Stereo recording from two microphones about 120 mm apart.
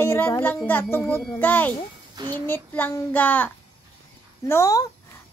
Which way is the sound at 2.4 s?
15° left (ahead or behind).